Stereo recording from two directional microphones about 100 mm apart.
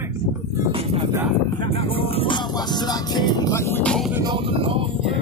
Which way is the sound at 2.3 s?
45° left (ahead or behind).